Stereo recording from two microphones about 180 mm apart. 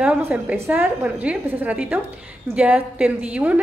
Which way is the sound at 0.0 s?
5° right (ahead or behind).